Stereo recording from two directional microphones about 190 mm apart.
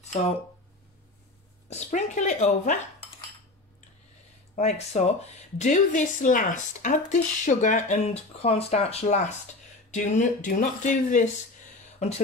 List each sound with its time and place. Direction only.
1.7 s speech: 40° left (ahead or behind)
4.6 s speech: 35° left (ahead or behind)